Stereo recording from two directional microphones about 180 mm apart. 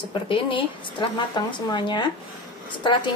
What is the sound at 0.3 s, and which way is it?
A woman's voice, 30° left (ahead or behind).